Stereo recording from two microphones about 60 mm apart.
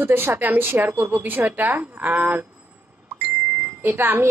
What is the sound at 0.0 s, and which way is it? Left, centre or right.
Speech, right.